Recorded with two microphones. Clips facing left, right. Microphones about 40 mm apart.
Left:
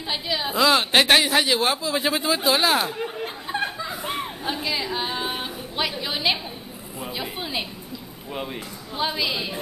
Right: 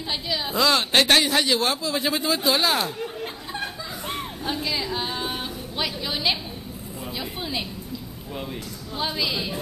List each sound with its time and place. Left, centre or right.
0.1 s a woman's voice: centre
3.0 s laughter: centre
4.0 s a sound: centre
7.1 s a woman's voice: centre
8.9 s a woman's voice: centre